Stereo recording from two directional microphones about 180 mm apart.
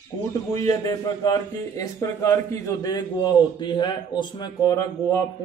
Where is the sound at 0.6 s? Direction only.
20° left (ahead or behind).